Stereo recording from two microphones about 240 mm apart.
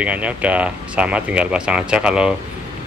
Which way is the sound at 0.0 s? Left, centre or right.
Centre.